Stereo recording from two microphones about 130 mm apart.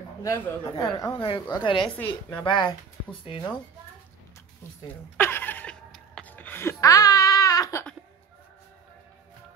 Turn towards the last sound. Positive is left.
turn(degrees=30)  # may be behind; listen again after turning